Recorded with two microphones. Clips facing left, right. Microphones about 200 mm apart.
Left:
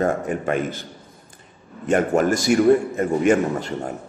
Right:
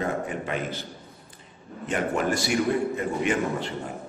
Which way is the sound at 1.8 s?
45° left (ahead or behind).